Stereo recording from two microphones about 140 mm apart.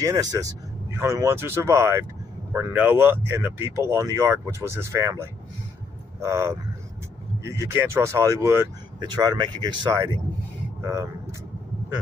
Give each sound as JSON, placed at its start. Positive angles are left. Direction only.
{"t": 0.0, "sound": "speech", "side_deg": -25}
{"t": 6.2, "sound": "speech", "side_deg": -20}
{"t": 9.1, "sound": "speech", "side_deg": -30}